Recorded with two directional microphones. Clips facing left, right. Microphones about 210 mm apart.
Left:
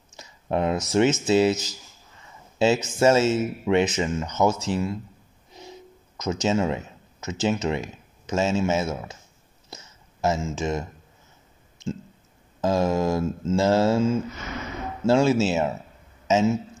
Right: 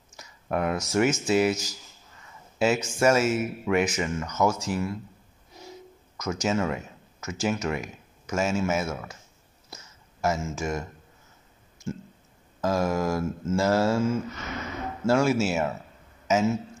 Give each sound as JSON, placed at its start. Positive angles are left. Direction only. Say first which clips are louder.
{"t": 0.1, "sound": "a sound", "louder": "left 3 dB", "side_deg": 25}
{"t": 0.9, "sound": "speech", "louder": "left 3 dB", "side_deg": 25}
{"t": 10.4, "sound": "speech", "louder": "left 3 dB", "side_deg": 20}
{"t": 12.6, "sound": "speech", "louder": "left 3 dB", "side_deg": 25}